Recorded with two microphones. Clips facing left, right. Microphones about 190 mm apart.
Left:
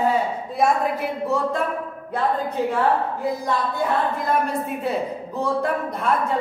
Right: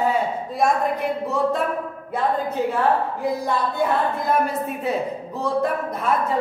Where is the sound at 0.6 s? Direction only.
Centre (ahead or behind).